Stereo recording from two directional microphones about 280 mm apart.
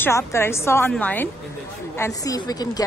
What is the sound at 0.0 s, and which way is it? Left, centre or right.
A woman's voice, centre.